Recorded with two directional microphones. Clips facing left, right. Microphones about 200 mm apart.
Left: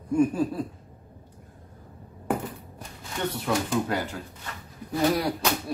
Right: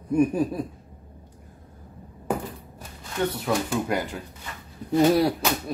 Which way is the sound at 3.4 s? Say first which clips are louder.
Right 1 dB; 15° right (ahead or behind).